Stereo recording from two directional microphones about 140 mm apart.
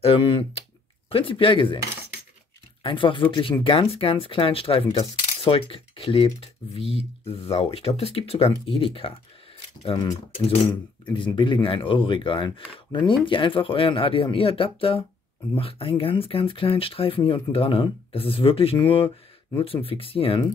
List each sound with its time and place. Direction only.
0.0 s speech: 45° left (ahead or behind)
2.8 s speech: 35° left (ahead or behind)
11.1 s speech: 35° left (ahead or behind)